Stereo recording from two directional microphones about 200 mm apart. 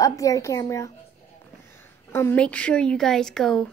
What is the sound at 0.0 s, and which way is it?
A woman's voice, 15° left (ahead or behind).